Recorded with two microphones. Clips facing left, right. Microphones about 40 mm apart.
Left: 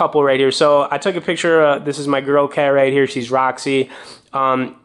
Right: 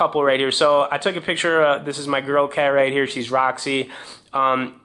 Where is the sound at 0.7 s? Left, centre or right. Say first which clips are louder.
Left 3 dB; centre.